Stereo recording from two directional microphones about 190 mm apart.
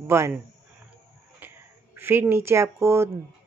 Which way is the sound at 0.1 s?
15° right (ahead or behind).